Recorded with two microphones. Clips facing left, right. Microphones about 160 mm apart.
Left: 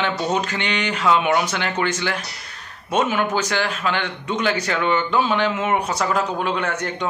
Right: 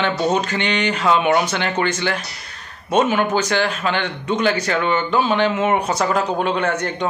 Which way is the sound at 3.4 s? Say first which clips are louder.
Right 3 dB; 10° left (ahead or behind).